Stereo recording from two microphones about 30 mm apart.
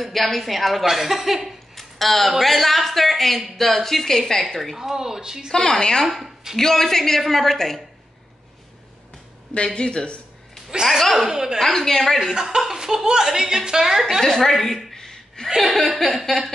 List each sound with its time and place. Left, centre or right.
0.0 s a woman's voice: centre
0.8 s speech: centre
1.8 s a sound: centre
2.3 s a woman's voice: centre
4.7 s speech: centre
5.5 s a woman's voice: centre
9.8 s speech: left
10.9 s a woman's voice: centre
11.2 s speech: centre
11.7 s a woman's voice: centre
12.4 s a woman's voice: centre
14.2 s a woman's voice: centre
15.0 s a sound: centre
15.4 s a woman's voice: centre